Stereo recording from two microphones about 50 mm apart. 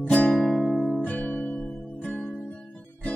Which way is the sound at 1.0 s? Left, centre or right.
Left.